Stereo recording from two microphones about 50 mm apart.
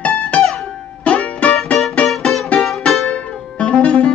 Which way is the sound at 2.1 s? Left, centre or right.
Centre.